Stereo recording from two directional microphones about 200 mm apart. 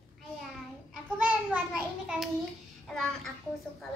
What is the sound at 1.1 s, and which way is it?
Child singing, 10° right (ahead or behind).